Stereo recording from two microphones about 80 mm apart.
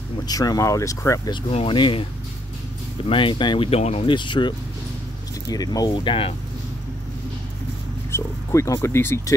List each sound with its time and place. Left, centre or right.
0.2 s speech: left
1.3 s speech: left
3.2 s speech: left
5.5 s speech: left
8.1 s speech: left